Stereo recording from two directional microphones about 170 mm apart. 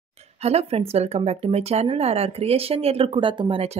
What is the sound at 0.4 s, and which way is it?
Speech, 35° right (ahead or behind).